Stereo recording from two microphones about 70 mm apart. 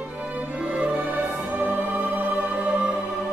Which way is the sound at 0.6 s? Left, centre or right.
Centre.